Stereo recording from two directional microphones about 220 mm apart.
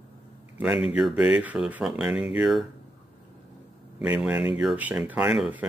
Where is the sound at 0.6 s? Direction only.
5° right (ahead or behind).